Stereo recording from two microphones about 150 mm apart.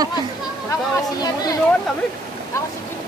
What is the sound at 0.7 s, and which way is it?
Speech, 25° left (ahead or behind).